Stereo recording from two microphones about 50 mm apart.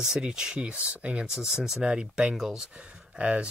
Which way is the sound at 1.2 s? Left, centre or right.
Centre.